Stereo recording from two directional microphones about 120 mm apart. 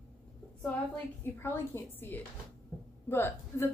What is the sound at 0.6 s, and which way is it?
A woman's voice, 15° left (ahead or behind).